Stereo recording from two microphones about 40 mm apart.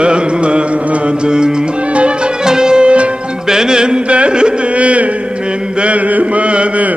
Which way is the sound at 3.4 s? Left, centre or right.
Centre.